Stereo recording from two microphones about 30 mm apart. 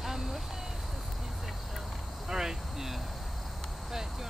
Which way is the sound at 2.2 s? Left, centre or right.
Centre.